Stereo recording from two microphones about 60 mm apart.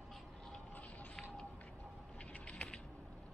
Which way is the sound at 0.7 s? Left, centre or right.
Left.